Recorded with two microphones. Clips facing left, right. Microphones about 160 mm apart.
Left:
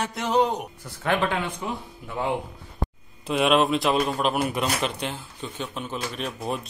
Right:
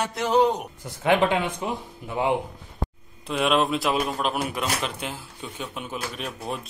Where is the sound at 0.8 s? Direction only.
20° right (ahead or behind).